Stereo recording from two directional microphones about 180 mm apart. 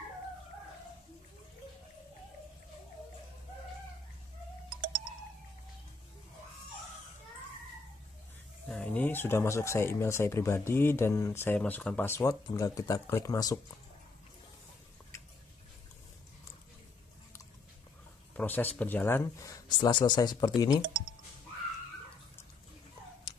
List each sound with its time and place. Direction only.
8.6 s speech: 5° left (ahead or behind)
18.3 s speech: 10° left (ahead or behind)